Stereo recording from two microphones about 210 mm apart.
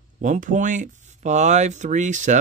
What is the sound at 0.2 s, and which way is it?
Speech, 35° right (ahead or behind).